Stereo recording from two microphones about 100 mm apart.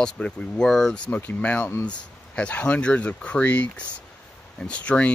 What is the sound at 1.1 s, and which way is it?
Speech, 15° left (ahead or behind).